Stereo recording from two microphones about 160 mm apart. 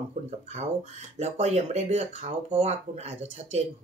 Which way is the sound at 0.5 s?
40° right (ahead or behind).